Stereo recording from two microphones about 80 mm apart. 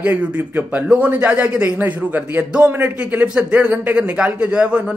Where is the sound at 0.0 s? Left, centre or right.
Right.